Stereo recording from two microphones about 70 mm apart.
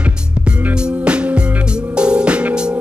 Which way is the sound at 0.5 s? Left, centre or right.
Centre.